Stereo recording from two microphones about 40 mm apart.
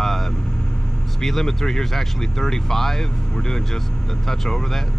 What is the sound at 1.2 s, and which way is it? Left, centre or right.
Speech, centre.